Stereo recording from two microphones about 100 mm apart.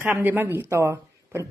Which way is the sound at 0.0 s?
20° right (ahead or behind).